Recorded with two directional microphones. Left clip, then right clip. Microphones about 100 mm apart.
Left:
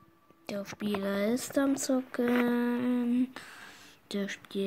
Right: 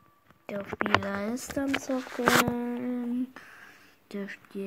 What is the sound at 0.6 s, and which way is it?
Speech, 10° right (ahead or behind).